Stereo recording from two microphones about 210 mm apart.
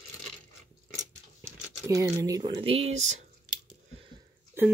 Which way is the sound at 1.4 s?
10° right (ahead or behind).